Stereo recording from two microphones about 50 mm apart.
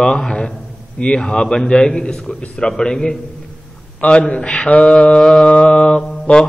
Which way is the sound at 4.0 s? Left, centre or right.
Left.